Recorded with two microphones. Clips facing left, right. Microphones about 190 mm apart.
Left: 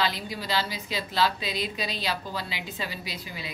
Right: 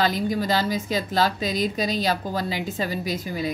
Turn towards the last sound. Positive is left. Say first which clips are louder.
# right 11 dB
turn(degrees=-45)  # may be behind; listen again after turning